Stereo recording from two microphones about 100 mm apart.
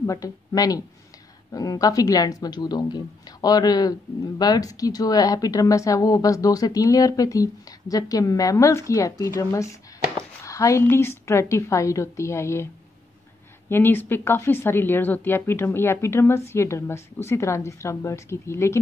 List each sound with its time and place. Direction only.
0.0 s speech: 35° left (ahead or behind)
10.4 s a sound: 30° left (ahead or behind)
10.8 s speech: 25° left (ahead or behind)
13.7 s speech: 20° left (ahead or behind)